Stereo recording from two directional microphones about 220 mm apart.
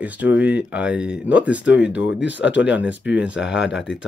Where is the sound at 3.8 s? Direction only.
55° left (ahead or behind).